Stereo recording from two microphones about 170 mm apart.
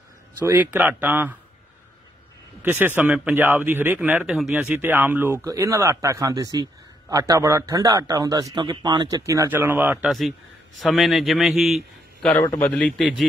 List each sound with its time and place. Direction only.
0.6 s speech: 10° right (ahead or behind)
2.6 s a man's voice: 10° right (ahead or behind)
12.3 s a man's voice: 10° left (ahead or behind)